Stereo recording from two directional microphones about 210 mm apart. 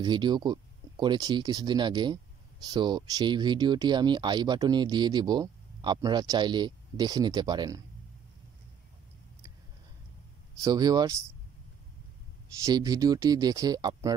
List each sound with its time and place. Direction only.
0.0 s speech: 20° right (ahead or behind)
10.6 s speech: 20° right (ahead or behind)
12.6 s speech: 20° right (ahead or behind)